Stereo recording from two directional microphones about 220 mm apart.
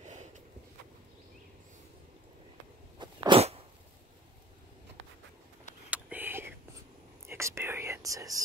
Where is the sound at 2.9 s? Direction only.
20° right (ahead or behind).